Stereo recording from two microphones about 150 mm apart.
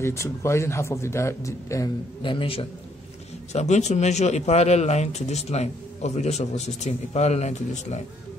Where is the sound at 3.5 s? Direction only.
45° left (ahead or behind).